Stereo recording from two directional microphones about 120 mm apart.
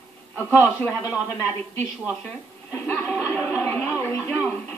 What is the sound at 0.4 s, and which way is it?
Speech, 20° left (ahead or behind).